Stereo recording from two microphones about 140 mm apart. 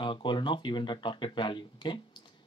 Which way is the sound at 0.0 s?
35° left (ahead or behind).